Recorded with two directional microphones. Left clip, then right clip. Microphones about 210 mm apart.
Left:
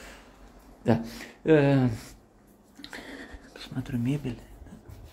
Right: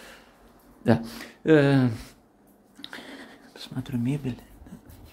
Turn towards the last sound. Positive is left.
turn(degrees=-5)  # may be behind; listen again after turning